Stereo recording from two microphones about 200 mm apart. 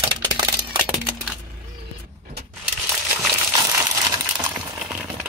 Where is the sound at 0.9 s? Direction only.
5° right (ahead or behind).